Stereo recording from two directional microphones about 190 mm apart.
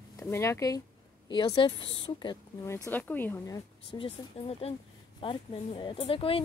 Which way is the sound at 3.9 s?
30° left (ahead or behind).